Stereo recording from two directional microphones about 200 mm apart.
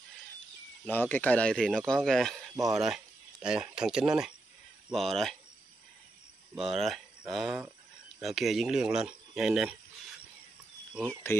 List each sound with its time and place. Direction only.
0.8 s speech: 10° left (ahead or behind)
6.5 s speech: centre (ahead or behind)
11.0 s speech: 5° left (ahead or behind)